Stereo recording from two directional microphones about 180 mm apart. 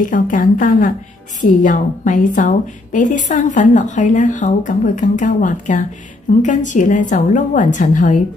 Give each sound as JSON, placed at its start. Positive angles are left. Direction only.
{"t": 0.0, "sound": "a woman's voice", "side_deg": 45}